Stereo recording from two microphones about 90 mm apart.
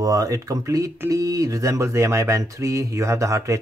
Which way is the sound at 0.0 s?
40° right (ahead or behind).